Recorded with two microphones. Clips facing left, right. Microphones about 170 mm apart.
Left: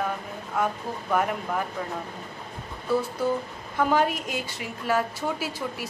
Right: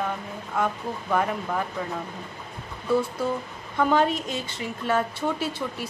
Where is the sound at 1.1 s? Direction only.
5° left (ahead or behind).